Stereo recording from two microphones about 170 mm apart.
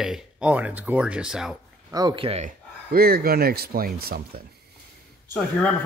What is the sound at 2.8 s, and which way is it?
Speech, 60° right (ahead or behind).